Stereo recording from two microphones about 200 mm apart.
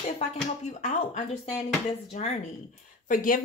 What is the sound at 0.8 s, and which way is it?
Speech, 35° left (ahead or behind).